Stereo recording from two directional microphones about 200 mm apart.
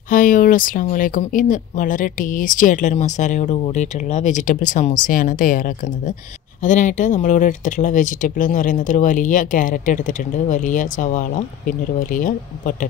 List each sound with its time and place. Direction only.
0.1 s speech: 40° left (ahead or behind)